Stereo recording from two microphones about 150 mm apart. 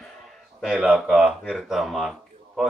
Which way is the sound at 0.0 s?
Centre (ahead or behind).